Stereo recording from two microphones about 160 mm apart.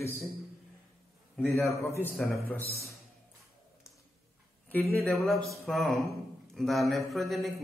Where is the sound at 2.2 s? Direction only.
5° left (ahead or behind).